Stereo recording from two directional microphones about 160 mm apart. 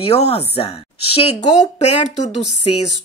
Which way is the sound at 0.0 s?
40° left (ahead or behind).